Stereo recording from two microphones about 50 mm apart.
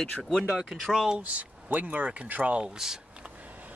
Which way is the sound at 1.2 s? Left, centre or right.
Right.